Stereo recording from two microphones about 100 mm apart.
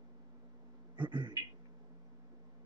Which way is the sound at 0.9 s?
50° right (ahead or behind).